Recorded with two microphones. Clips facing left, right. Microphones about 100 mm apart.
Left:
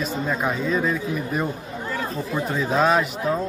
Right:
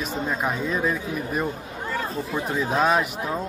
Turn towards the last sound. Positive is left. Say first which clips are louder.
# left 2 dB
turn(degrees=-5)  # may be behind; listen again after turning